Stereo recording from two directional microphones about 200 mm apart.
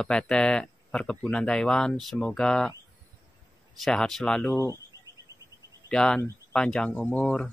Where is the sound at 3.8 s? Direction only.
Centre (ahead or behind).